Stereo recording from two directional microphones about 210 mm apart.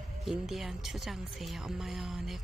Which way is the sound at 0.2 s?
Centre (ahead or behind).